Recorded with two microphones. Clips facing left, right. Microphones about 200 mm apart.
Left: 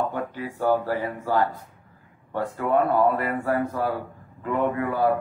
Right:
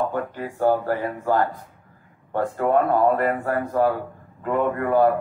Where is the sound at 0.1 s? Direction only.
50° right (ahead or behind).